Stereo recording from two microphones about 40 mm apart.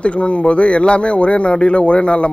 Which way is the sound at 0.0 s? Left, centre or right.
Left.